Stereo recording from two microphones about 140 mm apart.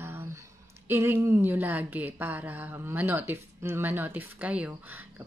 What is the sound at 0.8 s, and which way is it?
A woman's voice, 20° right (ahead or behind).